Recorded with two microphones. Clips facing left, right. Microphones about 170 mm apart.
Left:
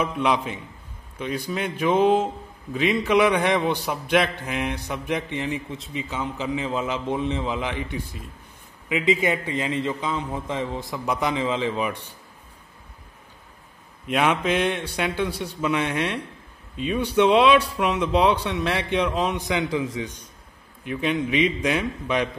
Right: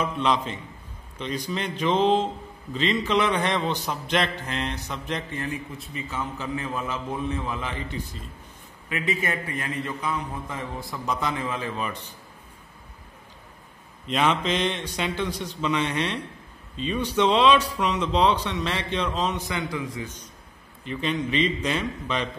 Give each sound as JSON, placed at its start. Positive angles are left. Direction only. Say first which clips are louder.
{"t": 0.0, "sound": "a man's voice", "louder": "left 2 dB", "side_deg": 10}
{"t": 14.0, "sound": "a man's voice", "louder": "left 2 dB", "side_deg": 10}